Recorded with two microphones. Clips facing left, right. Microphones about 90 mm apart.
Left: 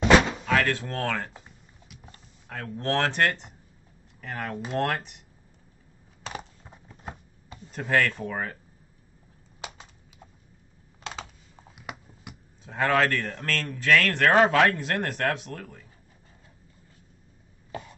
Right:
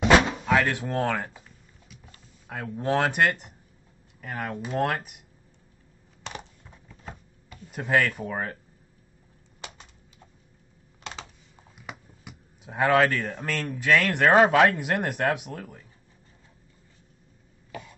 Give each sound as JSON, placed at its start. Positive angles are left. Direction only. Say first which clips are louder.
{"t": 0.0, "sound": "door", "louder": "even", "side_deg": 0}
{"t": 0.5, "sound": "speech", "louder": "right 1 dB", "side_deg": -15}
{"t": 2.4, "sound": "speech", "louder": "right 2 dB", "side_deg": -10}
{"t": 6.6, "sound": "a sound", "louder": "left 2 dB", "side_deg": 25}
{"t": 7.7, "sound": "speech", "louder": "right 1 dB", "side_deg": -10}
{"t": 9.6, "sound": "typing", "louder": "left 3 dB", "side_deg": 10}
{"t": 11.6, "sound": "a sound", "louder": "left 2 dB", "side_deg": 5}
{"t": 12.6, "sound": "speech", "louder": "right 2 dB", "side_deg": -15}
{"t": 17.6, "sound": "cough", "louder": "left 2 dB", "side_deg": 30}